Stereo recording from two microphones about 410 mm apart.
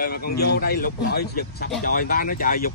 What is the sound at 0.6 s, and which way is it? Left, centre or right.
Speech, left.